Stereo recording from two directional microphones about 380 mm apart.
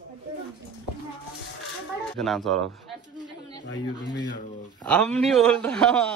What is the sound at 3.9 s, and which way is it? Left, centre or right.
Speech, centre.